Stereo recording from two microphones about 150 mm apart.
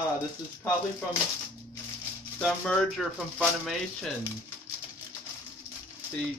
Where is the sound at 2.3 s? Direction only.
5° left (ahead or behind).